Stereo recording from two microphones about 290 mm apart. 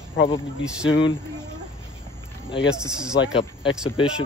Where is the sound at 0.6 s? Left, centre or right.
Centre.